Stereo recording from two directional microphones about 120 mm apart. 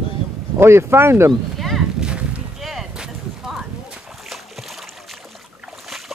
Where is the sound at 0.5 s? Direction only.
20° right (ahead or behind).